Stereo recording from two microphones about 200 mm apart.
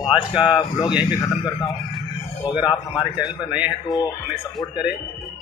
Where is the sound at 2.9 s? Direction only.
Centre (ahead or behind).